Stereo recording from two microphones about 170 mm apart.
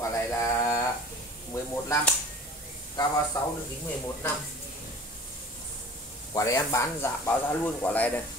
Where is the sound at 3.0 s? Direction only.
25° left (ahead or behind).